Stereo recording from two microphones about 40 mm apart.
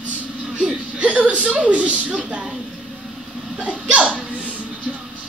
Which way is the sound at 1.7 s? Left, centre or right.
Right.